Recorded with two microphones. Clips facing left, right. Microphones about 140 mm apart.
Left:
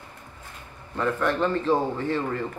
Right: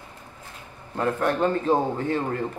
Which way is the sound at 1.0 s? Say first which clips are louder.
Right 1 dB; 45° right (ahead or behind).